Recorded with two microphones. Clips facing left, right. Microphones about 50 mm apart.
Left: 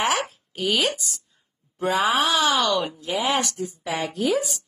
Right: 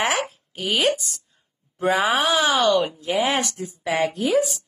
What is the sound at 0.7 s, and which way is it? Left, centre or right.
Speech, right.